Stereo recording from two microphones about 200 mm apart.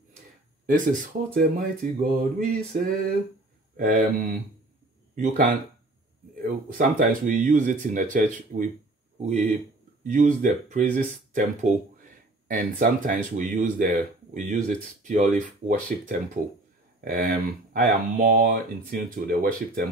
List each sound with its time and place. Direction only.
0.7 s speech: 40° right (ahead or behind)